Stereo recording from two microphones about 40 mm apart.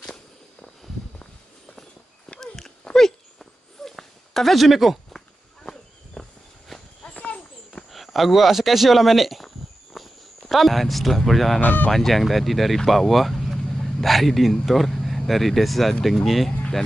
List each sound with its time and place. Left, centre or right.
0.0 s walk: centre
2.4 s dog: centre
5.1 s walk: centre
6.2 s walk: centre
6.7 s clip-clop: centre
7.7 s speech: centre
9.9 s walk: centre
10.5 s speech: centre
11.6 s speech: left
11.9 s speech: centre